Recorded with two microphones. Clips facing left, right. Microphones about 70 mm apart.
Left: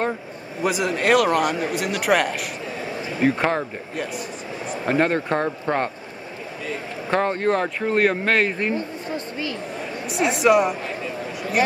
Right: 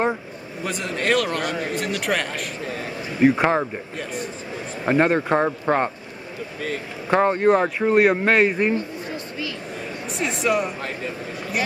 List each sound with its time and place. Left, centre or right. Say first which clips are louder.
0.7 s speech: left 4 dB; centre
3.3 s speech: right 3 dB; centre
3.9 s speech: left 1 dB; centre
4.8 s speech: right 2 dB; centre
7.1 s speech: right 4 dB; centre
8.7 s a sound: even; left
10.1 s speech: left 5 dB; centre